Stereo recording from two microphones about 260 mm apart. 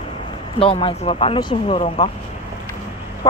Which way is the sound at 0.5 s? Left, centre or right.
Left.